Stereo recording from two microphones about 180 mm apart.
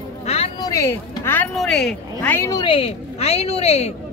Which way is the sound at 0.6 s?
20° left (ahead or behind).